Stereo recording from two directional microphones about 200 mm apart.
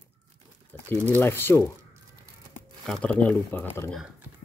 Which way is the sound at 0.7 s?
10° left (ahead or behind).